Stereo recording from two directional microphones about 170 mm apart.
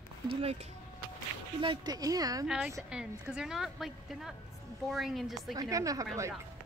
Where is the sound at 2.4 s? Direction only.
5° right (ahead or behind).